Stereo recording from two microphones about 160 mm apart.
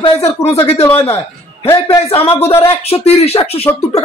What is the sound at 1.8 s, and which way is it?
Speech, 35° left (ahead or behind).